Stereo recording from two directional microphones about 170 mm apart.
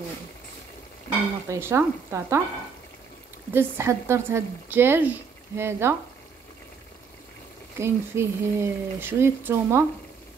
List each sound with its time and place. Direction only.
1.5 s speech: 15° right (ahead or behind)
3.5 s speech: 15° right (ahead or behind)
7.8 s speech: 15° right (ahead or behind)